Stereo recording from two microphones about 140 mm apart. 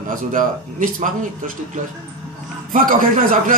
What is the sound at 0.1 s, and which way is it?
A man's voice, 70° right (ahead or behind).